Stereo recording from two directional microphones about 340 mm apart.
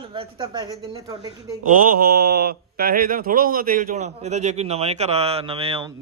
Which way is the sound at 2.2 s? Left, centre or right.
Right.